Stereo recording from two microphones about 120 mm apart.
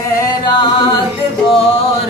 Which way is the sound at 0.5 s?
40° left (ahead or behind).